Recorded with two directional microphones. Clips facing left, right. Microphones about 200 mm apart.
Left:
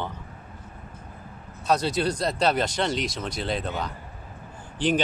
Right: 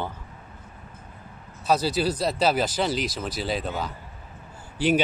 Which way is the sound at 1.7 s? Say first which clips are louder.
Right 1 dB; 5° right (ahead or behind).